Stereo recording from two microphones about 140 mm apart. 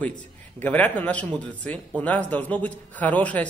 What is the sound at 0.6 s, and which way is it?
A man's voice, 10° left (ahead or behind).